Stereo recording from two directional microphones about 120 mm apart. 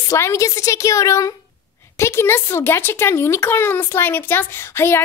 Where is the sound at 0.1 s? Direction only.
25° left (ahead or behind).